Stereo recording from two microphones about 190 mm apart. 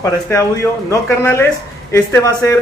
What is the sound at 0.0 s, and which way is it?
Speech, 15° left (ahead or behind).